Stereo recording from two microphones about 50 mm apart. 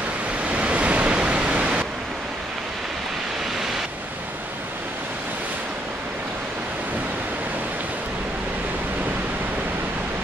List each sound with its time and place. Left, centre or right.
0.5 s waves: right